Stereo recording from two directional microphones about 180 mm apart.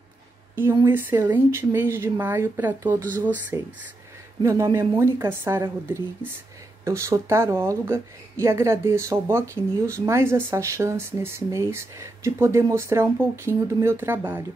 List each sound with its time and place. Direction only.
0.8 s a woman's voice: 10° right (ahead or behind)